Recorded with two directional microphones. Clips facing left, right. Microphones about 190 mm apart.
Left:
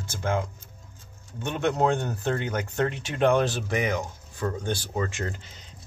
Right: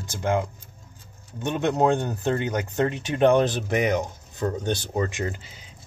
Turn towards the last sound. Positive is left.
turn(degrees=-5)  # may be behind; listen again after turning